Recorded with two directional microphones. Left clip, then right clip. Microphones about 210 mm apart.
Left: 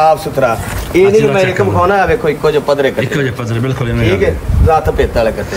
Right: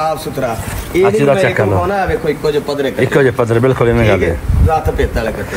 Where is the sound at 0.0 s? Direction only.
30° left (ahead or behind).